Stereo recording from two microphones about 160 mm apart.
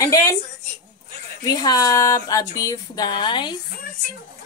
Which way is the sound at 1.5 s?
25° left (ahead or behind).